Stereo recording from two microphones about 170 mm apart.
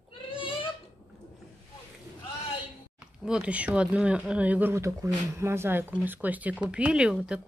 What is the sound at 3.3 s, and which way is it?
Speech, 5° right (ahead or behind).